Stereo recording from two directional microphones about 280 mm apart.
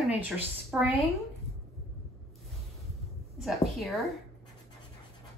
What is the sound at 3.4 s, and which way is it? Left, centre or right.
Speech, centre.